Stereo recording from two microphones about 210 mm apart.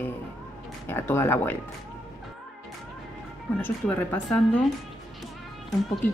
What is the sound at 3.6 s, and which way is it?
Speech, 10° left (ahead or behind).